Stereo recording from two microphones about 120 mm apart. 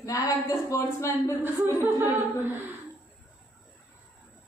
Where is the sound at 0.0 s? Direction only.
30° left (ahead or behind).